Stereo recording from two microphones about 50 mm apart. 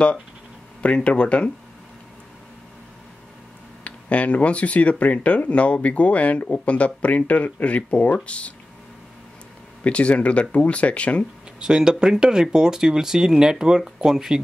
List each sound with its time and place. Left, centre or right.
0.8 s speech: left
3.8 s speech: left
9.8 s speech: left
11.6 s speech: centre